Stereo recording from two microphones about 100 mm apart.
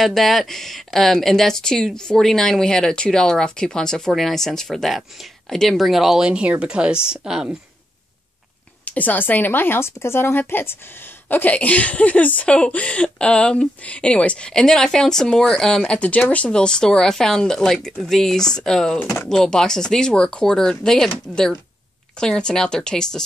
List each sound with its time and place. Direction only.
0.0 s speech: centre (ahead or behind)
8.8 s speech: 15° left (ahead or behind)